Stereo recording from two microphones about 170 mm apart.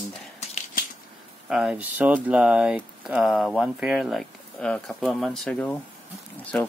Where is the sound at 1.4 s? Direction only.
5° right (ahead or behind).